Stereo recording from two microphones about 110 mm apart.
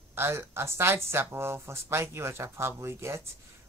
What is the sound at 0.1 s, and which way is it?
A woman's voice, 20° right (ahead or behind).